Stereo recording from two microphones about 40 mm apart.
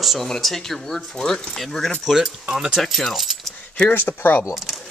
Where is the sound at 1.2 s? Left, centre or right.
Centre.